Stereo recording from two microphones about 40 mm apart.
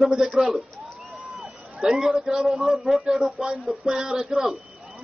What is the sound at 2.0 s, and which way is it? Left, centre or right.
Speech, centre.